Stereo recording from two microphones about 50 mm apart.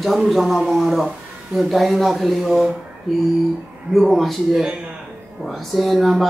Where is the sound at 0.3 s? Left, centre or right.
Centre.